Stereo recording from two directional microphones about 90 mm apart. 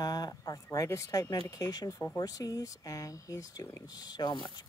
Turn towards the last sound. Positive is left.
turn(degrees=50)  # may be behind; listen again after turning